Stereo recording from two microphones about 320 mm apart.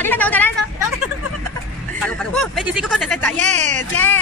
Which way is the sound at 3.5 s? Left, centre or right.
Right.